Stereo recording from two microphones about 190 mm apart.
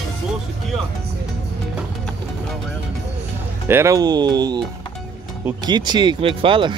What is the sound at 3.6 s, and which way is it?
Speech, 15° right (ahead or behind).